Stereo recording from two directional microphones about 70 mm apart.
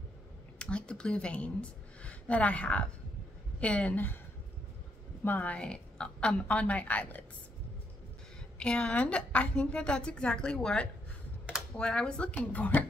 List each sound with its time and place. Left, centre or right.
0.6 s a woman's voice: centre
5.2 s a woman's voice: left
5.6 s a woman's voice: centre
8.5 s a woman's voice: centre